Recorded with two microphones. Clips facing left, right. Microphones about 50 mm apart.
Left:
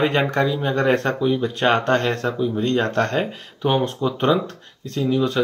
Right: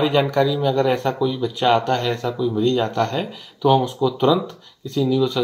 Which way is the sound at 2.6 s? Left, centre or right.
Left.